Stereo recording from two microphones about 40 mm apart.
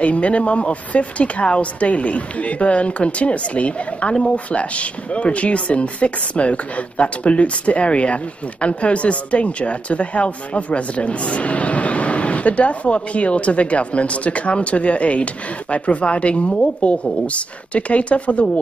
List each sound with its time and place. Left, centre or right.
0.0 s a woman's voice: left